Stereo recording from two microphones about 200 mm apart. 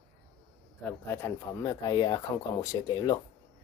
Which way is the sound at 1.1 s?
15° left (ahead or behind).